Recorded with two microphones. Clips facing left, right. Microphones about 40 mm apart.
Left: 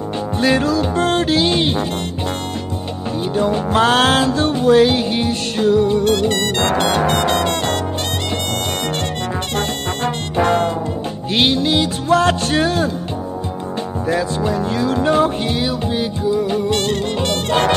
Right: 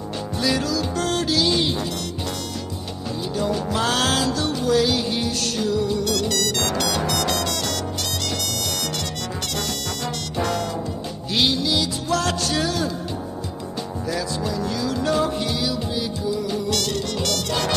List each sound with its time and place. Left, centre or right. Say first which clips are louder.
0.4 s music: left 7 dB; left
3.3 s music: left 7 dB; left
9.6 s music: left 7 dB; left
14.0 s music: left 7 dB; left